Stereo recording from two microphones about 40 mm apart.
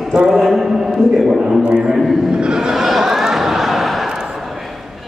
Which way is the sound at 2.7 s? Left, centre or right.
Centre.